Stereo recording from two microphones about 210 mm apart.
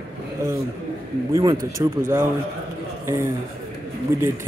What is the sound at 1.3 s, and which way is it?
Speech, 15° right (ahead or behind).